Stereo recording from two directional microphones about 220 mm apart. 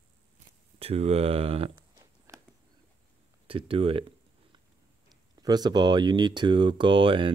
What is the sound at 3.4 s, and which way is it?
Speech, 25° right (ahead or behind).